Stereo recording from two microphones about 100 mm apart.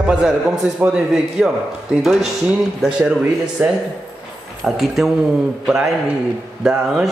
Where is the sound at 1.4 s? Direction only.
5° right (ahead or behind).